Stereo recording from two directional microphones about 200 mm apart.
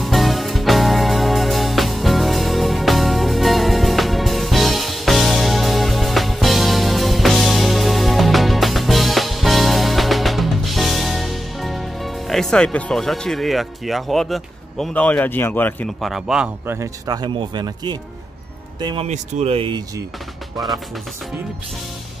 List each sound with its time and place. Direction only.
0.0 s music: centre (ahead or behind); by 17.9 s 20° right (ahead or behind)
18.8 s speech: 20° right (ahead or behind)
19.0 s speech: 35° right (ahead or behind)